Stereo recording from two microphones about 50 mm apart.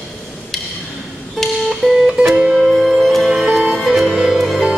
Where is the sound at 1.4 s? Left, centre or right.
Centre.